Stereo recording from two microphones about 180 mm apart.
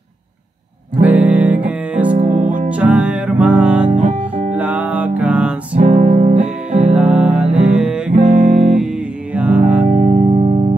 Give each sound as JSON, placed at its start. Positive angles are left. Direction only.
{"t": 1.0, "sound": "music", "side_deg": -10}
{"t": 2.0, "sound": "music", "side_deg": -45}
{"t": 2.7, "sound": "music", "side_deg": -10}
{"t": 5.8, "sound": "music", "side_deg": -40}
{"t": 7.0, "sound": "music", "side_deg": -5}
{"t": 8.1, "sound": "music", "side_deg": -45}
{"t": 8.6, "sound": "music", "side_deg": -5}
{"t": 9.9, "sound": "music", "side_deg": -35}